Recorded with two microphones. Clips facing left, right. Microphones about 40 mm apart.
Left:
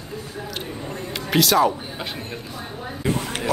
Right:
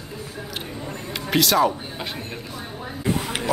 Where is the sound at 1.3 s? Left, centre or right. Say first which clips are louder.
Left 1 dB; centre.